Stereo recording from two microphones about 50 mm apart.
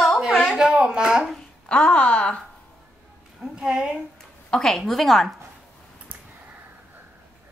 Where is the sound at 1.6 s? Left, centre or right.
Centre.